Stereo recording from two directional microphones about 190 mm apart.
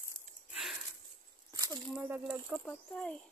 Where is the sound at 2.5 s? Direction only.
Centre (ahead or behind).